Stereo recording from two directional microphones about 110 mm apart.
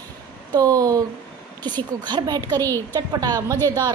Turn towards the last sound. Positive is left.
turn(degrees=-35)  # may be behind; listen again after turning